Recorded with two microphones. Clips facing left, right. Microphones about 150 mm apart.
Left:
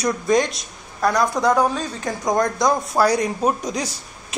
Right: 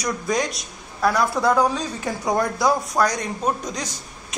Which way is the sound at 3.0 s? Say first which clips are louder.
Left 4 dB; 5° left (ahead or behind).